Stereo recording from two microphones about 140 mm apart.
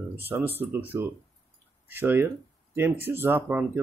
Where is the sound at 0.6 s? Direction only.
15° right (ahead or behind).